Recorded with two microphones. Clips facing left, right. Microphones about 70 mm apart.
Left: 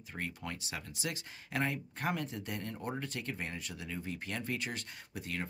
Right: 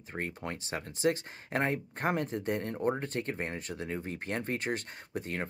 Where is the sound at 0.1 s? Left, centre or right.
Right.